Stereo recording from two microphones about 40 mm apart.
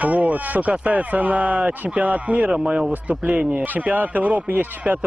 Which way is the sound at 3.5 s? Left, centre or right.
Right.